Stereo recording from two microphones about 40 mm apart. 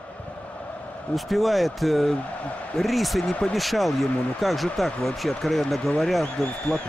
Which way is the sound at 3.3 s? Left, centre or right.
Centre.